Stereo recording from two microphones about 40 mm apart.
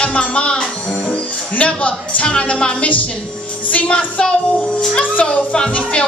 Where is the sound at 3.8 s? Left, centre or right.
Left.